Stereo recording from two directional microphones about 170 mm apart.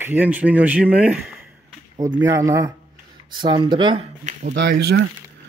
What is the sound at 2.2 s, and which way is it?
Speech, 20° right (ahead or behind).